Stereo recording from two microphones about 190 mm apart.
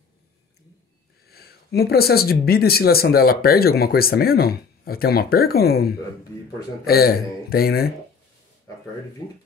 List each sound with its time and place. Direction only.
1.3 s speech: 55° left (ahead or behind)